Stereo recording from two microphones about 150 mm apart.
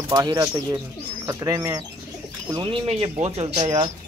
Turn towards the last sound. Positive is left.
turn(degrees=-25)  # may be behind; listen again after turning